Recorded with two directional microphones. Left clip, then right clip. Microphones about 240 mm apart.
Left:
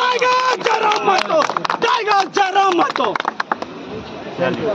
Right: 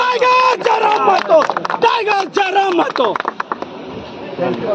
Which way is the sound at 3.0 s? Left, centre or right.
Left.